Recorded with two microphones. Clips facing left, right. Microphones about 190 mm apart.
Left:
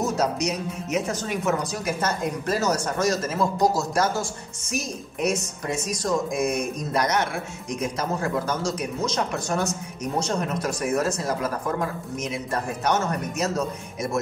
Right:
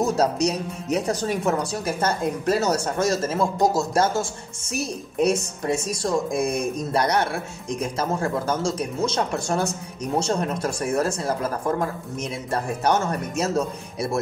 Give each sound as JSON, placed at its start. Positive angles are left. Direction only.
{"t": 0.0, "sound": "speech", "side_deg": -30}